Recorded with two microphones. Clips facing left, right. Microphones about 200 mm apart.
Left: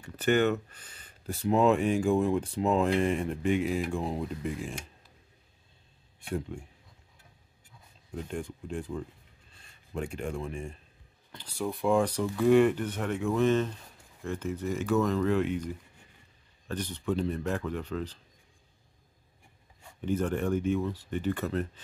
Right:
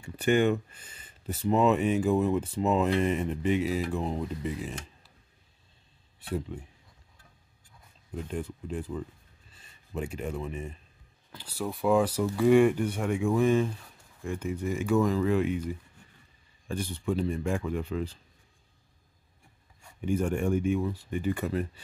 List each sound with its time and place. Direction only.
0.0 s speech: 10° right (ahead or behind)
8.1 s speech: 5° right (ahead or behind)
20.0 s speech: 10° right (ahead or behind)